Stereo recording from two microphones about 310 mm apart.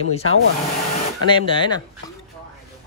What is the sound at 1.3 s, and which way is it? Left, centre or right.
Speech, centre.